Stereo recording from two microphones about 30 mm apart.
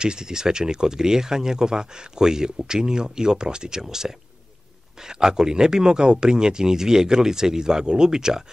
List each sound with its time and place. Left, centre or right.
0.0 s speech: right
3.8 s speech: centre